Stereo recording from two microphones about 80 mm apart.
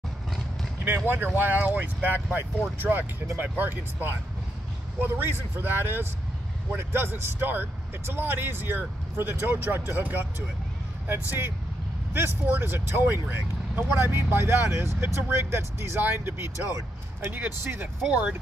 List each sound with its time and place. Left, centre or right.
1.0 s speech: right
18.0 s speech: centre